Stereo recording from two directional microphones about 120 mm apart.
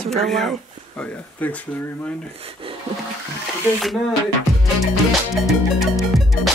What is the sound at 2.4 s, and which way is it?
Speech, 50° right (ahead or behind).